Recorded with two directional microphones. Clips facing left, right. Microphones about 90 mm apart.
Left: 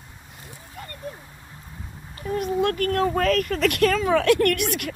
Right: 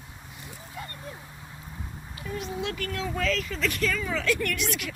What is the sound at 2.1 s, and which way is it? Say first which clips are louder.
Speech: left 9 dB; 40° left (ahead or behind).